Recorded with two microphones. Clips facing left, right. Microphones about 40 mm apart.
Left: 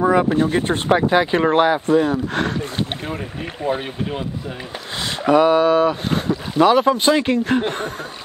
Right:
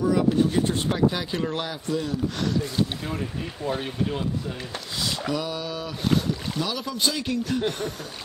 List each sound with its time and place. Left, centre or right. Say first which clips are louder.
0.0 s speech: left 5 dB; left
3.6 s speech: left 5 dB; left
5.3 s speech: left 15 dB; left